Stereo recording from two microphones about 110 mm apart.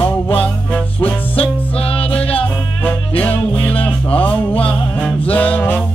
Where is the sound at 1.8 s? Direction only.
60° left (ahead or behind).